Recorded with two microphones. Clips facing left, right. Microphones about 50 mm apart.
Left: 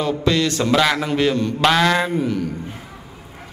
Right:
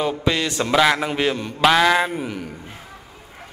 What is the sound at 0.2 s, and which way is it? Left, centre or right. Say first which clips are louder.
A man's voice: left 3 dB; centre.